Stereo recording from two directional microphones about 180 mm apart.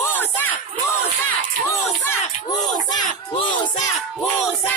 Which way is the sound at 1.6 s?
15° left (ahead or behind).